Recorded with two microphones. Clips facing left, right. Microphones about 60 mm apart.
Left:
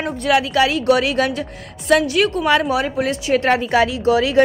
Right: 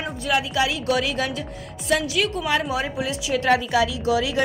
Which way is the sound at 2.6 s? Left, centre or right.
Left.